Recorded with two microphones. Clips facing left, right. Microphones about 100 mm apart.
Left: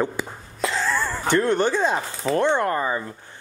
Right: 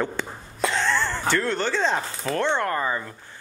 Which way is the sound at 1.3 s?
15° left (ahead or behind).